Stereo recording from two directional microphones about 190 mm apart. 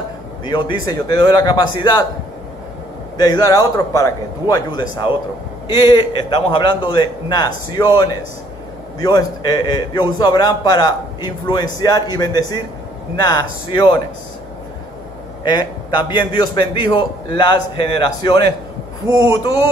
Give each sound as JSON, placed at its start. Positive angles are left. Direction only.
{"t": 0.5, "sound": "a man's voice", "side_deg": 20}
{"t": 3.2, "sound": "a man's voice", "side_deg": 20}
{"t": 15.4, "sound": "a man's voice", "side_deg": 20}